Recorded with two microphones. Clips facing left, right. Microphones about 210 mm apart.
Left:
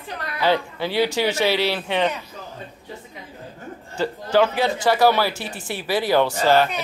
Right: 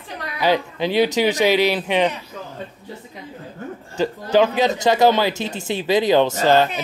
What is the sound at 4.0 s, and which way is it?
Speech, 20° right (ahead or behind).